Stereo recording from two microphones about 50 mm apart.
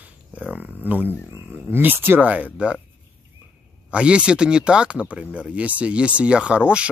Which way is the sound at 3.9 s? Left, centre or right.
Right.